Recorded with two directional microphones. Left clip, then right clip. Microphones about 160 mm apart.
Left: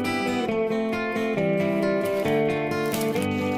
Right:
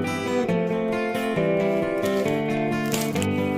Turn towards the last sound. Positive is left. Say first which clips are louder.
# even
turn(degrees=0)  # may be behind; listen again after turning